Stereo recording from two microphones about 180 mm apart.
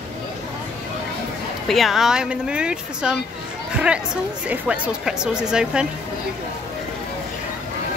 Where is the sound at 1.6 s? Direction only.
Centre (ahead or behind).